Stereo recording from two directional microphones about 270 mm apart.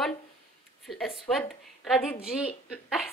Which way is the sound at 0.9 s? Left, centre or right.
Centre.